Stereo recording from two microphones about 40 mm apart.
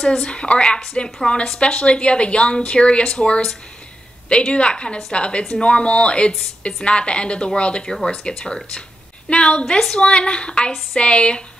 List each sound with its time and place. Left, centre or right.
0.0 s a woman's voice: centre
4.5 s a woman's voice: left
7.8 s a woman's voice: centre; by 11.4 s left